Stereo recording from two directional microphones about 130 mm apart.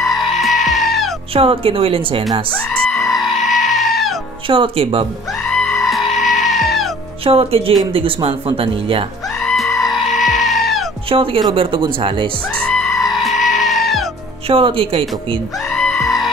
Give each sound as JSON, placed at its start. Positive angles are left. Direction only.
{"t": 0.0, "sound": "goat", "side_deg": 0}
{"t": 1.3, "sound": "speech", "side_deg": -45}
{"t": 2.5, "sound": "goat", "side_deg": 10}
{"t": 4.5, "sound": "speech", "side_deg": -45}
{"t": 5.5, "sound": "music", "side_deg": 5}
{"t": 7.2, "sound": "speech", "side_deg": -45}
{"t": 9.4, "sound": "music", "side_deg": 5}
{"t": 11.1, "sound": "speech", "side_deg": -45}
{"t": 12.5, "sound": "music", "side_deg": 5}
{"t": 14.5, "sound": "speech", "side_deg": -45}
{"t": 15.7, "sound": "sheep", "side_deg": 5}